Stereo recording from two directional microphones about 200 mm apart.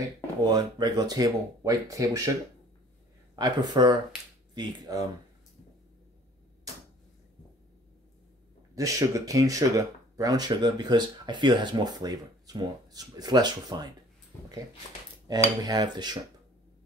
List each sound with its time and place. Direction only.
0.5 s speech: 20° right (ahead or behind)
3.3 s speech: 20° right (ahead or behind)
8.7 s speech: 15° right (ahead or behind)
15.3 s speech: 20° right (ahead or behind)